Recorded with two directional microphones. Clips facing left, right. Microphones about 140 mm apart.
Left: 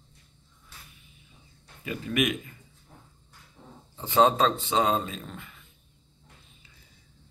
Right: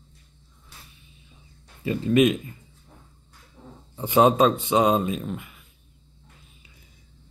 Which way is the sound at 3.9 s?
15° right (ahead or behind).